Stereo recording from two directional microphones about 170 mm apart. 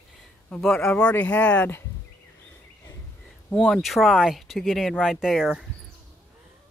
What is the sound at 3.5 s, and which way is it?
Speech, centre (ahead or behind).